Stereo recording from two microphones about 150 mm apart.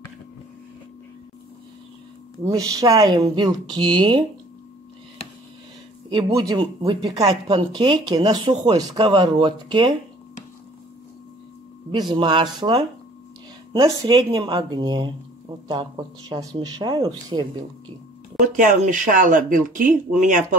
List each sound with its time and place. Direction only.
2.4 s speech: 25° right (ahead or behind)
6.0 s speech: 30° right (ahead or behind)
11.9 s speech: 30° right (ahead or behind)
13.8 s speech: 25° right (ahead or behind)
18.6 s speech: 55° right (ahead or behind)